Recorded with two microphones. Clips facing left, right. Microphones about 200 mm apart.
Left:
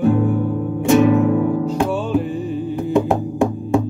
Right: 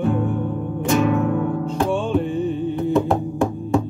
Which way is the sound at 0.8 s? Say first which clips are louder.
Left 5 dB; 20° left (ahead or behind).